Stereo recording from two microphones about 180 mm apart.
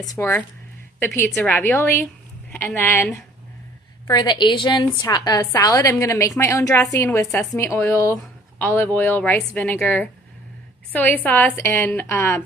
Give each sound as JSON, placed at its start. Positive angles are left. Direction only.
{"t": 0.1, "sound": "a woman's voice", "side_deg": 15}
{"t": 4.1, "sound": "a woman's voice", "side_deg": 25}